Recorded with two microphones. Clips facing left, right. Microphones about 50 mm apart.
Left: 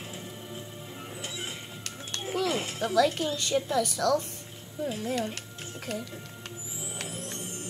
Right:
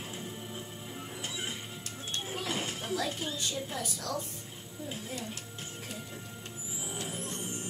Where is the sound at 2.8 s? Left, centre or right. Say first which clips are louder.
Left 9 dB; left.